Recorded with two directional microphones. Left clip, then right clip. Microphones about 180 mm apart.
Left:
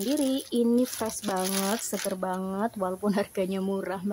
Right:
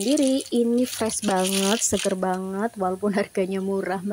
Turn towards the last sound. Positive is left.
turn(degrees=-15)  # may be behind; listen again after turning